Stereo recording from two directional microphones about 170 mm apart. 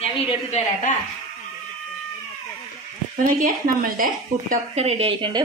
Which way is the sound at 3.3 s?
55° right (ahead or behind).